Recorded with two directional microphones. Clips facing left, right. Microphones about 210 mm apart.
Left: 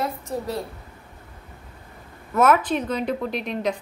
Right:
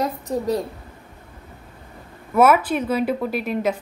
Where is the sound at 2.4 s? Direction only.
10° right (ahead or behind).